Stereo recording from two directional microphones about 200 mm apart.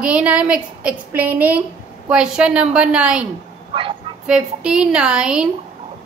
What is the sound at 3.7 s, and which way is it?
Bow-wow, 25° right (ahead or behind).